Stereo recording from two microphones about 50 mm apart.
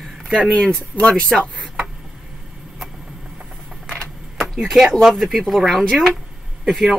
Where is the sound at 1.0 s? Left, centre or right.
Left.